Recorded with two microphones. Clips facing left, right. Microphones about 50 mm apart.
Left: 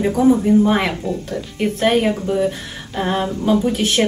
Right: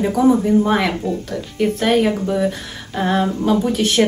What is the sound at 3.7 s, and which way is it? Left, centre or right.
Speech, centre.